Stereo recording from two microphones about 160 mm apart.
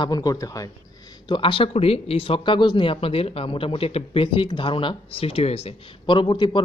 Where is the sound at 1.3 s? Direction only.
35° left (ahead or behind).